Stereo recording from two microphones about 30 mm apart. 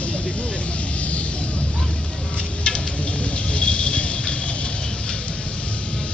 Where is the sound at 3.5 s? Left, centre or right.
Left.